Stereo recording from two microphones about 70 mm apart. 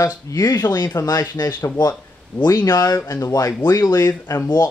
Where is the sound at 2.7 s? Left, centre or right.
Left.